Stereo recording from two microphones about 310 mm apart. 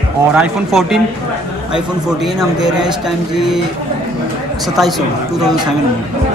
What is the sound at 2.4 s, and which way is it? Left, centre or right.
Speech, centre.